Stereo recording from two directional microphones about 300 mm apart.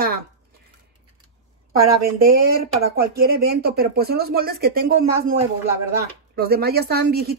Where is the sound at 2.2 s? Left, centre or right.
Right.